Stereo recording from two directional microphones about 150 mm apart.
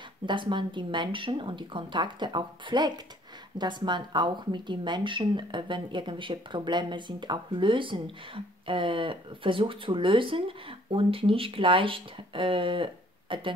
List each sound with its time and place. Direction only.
0.3 s speech: 30° right (ahead or behind)